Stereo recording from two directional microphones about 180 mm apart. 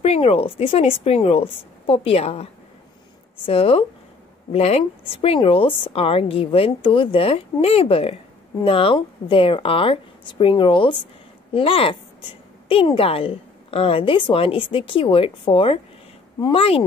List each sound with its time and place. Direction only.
0.0 s a woman's voice: 35° left (ahead or behind)